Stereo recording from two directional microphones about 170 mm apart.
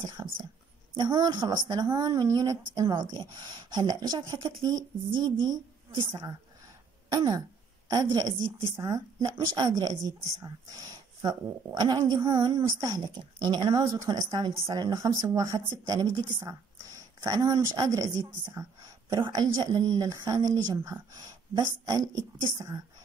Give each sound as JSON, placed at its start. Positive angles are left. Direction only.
{"t": 0.2, "sound": "speech", "side_deg": -20}
{"t": 7.1, "sound": "throat clearing", "side_deg": -20}
{"t": 7.9, "sound": "speech", "side_deg": -20}